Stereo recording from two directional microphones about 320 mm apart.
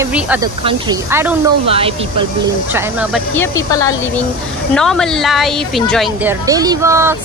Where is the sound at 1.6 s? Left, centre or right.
Centre.